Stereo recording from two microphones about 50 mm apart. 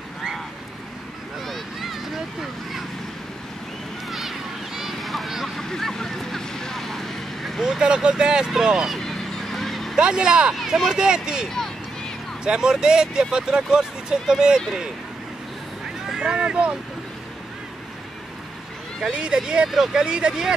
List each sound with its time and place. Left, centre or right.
1.4 s vehicle: centre
4.1 s a sound: centre
5.6 s vehicle: centre
7.6 s speech: centre
8.9 s a sound: centre
9.9 s speech: centre
12.4 s speech: centre
16.3 s speech: centre
19.0 s speech: centre